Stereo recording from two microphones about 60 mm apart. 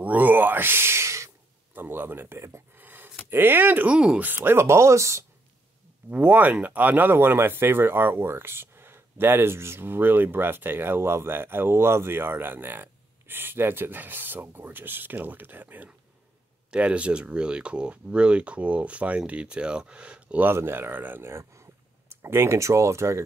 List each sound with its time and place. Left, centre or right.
0.0 s a sound: right
1.7 s speech: right
2.8 s a sound: right
3.3 s speech: right
6.0 s speech: right
20.4 s speech: right
21.3 s speech: right